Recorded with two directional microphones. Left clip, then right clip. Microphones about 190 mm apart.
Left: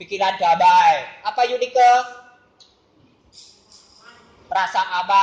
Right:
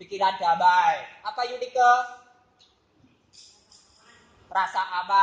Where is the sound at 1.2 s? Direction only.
15° left (ahead or behind).